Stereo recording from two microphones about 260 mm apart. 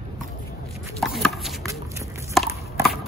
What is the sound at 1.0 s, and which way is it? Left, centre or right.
Chopping, centre.